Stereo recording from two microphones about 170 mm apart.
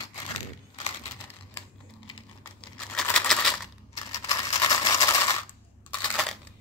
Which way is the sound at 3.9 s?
20° left (ahead or behind).